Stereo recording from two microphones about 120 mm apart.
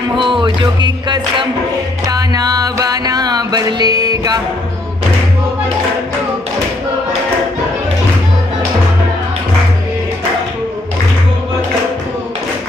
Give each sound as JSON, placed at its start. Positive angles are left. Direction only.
{"t": 0.2, "sound": "music", "side_deg": -45}